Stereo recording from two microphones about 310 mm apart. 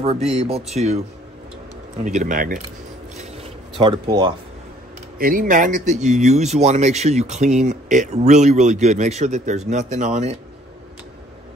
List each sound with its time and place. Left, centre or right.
0.0 s speech: centre
2.0 s speech: right
3.2 s a sound: centre
5.2 s speech: right